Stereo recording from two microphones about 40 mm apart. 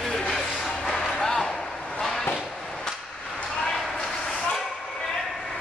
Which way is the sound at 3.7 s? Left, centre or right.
Centre.